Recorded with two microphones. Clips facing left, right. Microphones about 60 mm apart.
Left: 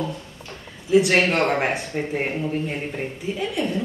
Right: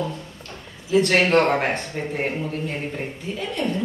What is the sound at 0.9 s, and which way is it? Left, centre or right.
A man's voice, centre.